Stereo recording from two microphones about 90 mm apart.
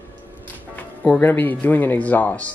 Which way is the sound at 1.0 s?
20° left (ahead or behind).